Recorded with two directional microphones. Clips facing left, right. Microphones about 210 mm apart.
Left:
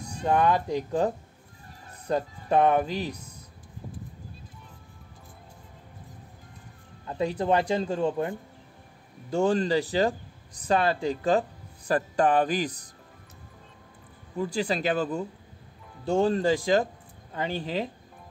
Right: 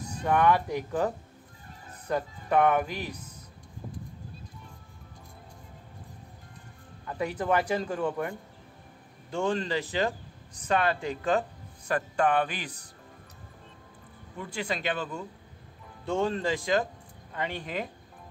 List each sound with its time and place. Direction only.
0.2 s speech: 25° left (ahead or behind)
7.1 s speech: 25° left (ahead or behind)
9.3 s speech: 40° left (ahead or behind)
14.3 s speech: 35° left (ahead or behind)